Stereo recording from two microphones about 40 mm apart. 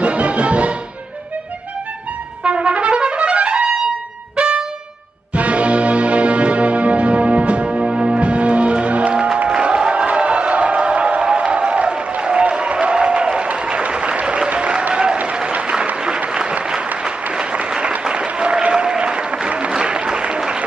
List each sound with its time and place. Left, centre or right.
0.0 s music: right
2.4 s trumpet: right
4.4 s music: right
9.5 s music: right
12.8 s applause: right
16.3 s applause: right